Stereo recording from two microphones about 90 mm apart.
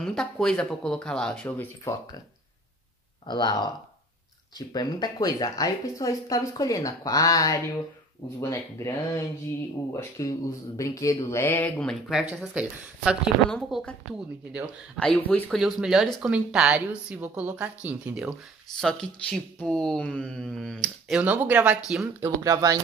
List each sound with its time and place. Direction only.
0.0 s speech: 5° left (ahead or behind)
3.3 s speech: 50° left (ahead or behind); by 11.7 s 25° left (ahead or behind)
12.1 s speech: 10° right (ahead or behind)
15.0 s speech: 15° left (ahead or behind)
15.5 s speech: 5° right (ahead or behind)
18.8 s speech: 5° left (ahead or behind)
21.1 s speech: 15° right (ahead or behind)
22.2 s speech: 40° right (ahead or behind)